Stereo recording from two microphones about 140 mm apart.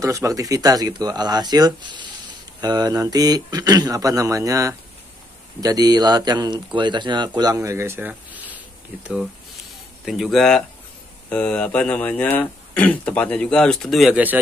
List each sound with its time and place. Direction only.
0.0 s speech: 25° right (ahead or behind)
10.0 s speech: centre (ahead or behind)